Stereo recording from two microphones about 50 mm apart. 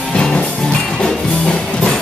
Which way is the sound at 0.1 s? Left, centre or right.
Centre.